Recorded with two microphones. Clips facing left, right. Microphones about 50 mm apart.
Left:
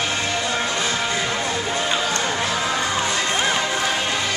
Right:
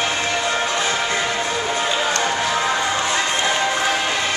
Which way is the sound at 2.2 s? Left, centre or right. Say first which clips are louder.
Right 3 dB; centre.